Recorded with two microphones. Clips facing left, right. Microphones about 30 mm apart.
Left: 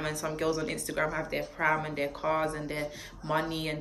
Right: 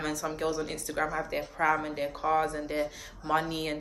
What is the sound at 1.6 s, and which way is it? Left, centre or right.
Speech, left.